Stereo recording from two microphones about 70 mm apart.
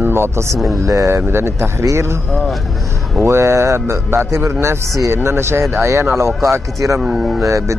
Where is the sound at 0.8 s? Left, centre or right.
Right.